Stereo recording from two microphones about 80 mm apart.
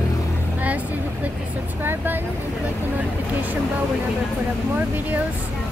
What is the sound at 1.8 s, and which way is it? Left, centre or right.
Speech, right.